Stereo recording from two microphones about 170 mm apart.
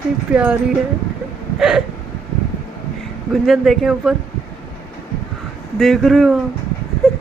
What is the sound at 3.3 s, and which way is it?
Speech, centre (ahead or behind).